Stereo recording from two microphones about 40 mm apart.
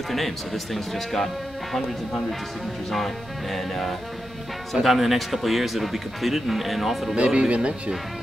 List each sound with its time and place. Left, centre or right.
0.7 s a man's voice: centre
3.5 s a man's voice: centre
7.2 s speech: right